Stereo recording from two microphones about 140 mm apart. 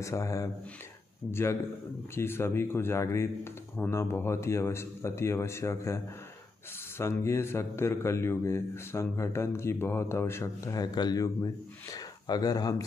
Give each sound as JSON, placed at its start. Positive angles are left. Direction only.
{"t": 0.0, "sound": "a man's voice", "side_deg": 20}